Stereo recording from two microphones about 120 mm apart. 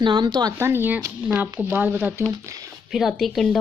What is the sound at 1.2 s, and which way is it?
Speech, 10° right (ahead or behind).